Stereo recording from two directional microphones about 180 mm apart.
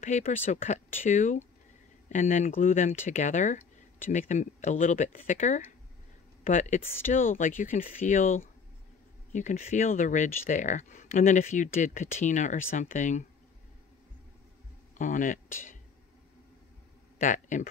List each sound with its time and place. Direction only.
0.0 s speech: 45° left (ahead or behind)
15.0 s speech: 45° left (ahead or behind)
17.2 s speech: 45° left (ahead or behind)